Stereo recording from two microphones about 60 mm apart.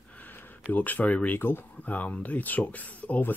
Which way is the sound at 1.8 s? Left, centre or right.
Left.